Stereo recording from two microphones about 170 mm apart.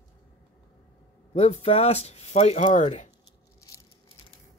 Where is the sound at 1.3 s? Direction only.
40° left (ahead or behind).